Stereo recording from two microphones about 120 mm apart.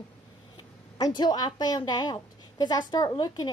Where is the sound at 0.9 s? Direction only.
35° left (ahead or behind).